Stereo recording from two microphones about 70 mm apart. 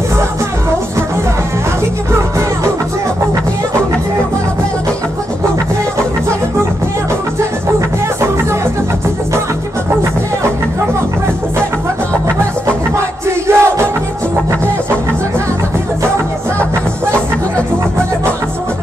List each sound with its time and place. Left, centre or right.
13.5 s music: right